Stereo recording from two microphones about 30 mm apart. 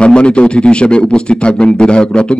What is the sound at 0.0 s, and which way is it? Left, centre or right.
Speech, left.